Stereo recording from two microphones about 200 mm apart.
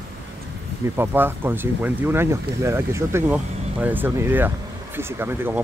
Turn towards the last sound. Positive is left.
turn(degrees=-10)  # may be behind; listen again after turning